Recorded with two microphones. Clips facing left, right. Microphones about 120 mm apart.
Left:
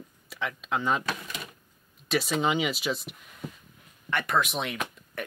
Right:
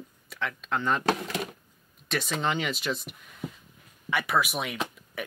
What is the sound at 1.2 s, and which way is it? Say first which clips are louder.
Speech: right 8 dB; 70° right (ahead or behind).